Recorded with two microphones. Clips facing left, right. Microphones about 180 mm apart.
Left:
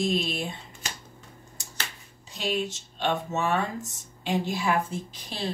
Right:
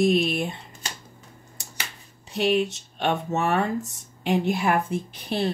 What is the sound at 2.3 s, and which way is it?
Speech, 60° right (ahead or behind).